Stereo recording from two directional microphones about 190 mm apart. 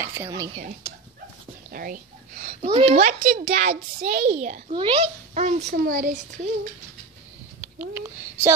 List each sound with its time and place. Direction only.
0.0 s speech: 10° right (ahead or behind)
1.7 s a woman's voice: 50° right (ahead or behind)